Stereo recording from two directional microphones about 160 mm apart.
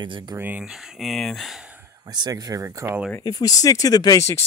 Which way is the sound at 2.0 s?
25° right (ahead or behind).